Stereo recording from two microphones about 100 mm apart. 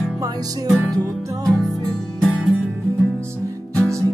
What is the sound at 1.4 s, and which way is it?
Music, centre (ahead or behind).